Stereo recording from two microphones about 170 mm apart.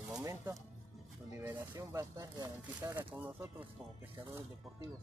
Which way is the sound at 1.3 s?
15° right (ahead or behind).